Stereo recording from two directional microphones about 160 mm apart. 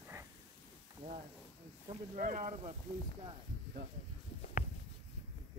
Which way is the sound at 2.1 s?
50° right (ahead or behind).